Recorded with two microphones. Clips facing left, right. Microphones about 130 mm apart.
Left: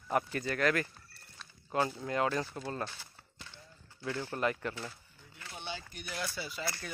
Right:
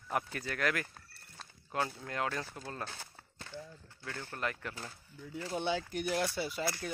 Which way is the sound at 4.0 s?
10° left (ahead or behind).